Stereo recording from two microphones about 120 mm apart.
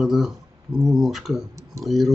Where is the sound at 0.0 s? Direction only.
5° right (ahead or behind).